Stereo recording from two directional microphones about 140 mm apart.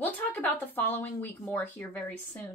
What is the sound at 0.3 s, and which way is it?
A woman's voice, 15° left (ahead or behind).